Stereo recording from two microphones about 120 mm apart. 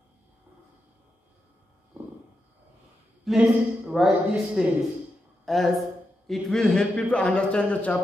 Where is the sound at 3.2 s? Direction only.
5° right (ahead or behind).